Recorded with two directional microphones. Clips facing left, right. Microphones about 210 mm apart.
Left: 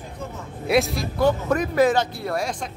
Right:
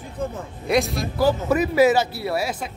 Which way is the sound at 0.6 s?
Centre (ahead or behind).